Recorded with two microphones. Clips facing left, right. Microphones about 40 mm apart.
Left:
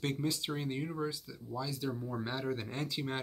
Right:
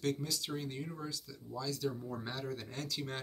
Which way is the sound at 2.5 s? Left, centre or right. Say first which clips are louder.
Left 4 dB; left.